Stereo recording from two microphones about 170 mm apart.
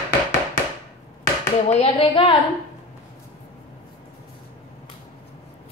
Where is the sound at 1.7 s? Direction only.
35° left (ahead or behind).